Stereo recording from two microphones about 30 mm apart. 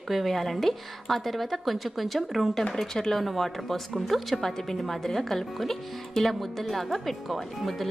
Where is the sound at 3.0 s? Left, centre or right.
Centre.